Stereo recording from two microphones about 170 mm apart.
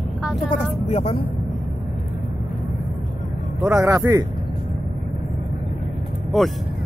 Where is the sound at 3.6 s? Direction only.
15° right (ahead or behind).